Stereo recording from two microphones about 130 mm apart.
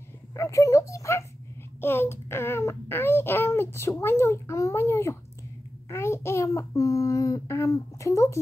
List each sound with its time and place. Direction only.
0.3 s a child's voice: 25° left (ahead or behind)